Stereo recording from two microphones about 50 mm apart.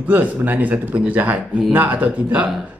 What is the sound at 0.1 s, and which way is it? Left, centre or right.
Speech, right.